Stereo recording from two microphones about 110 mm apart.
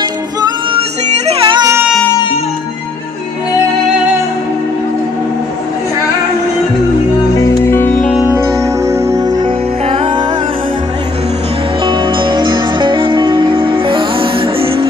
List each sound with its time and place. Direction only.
0.7 s music: 60° right (ahead or behind)
7.3 s music: 20° left (ahead or behind)
8.8 s music: 25° right (ahead or behind)
9.8 s music: 50° right (ahead or behind)
11.8 s music: 45° right (ahead or behind)